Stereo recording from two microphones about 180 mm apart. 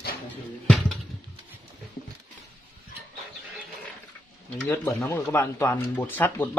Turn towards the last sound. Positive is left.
turn(degrees=10)  # may be behind; listen again after turning